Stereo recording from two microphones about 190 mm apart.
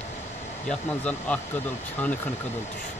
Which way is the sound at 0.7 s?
5° left (ahead or behind).